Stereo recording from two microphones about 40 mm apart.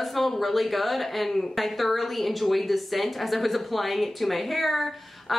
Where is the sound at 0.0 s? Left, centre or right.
Centre.